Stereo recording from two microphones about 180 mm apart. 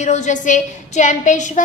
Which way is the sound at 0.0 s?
40° left (ahead or behind).